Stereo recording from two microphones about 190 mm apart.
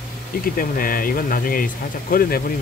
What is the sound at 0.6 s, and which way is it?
Speech, 50° left (ahead or behind).